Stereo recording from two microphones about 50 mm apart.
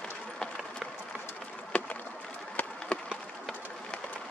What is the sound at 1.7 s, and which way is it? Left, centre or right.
Boat, left.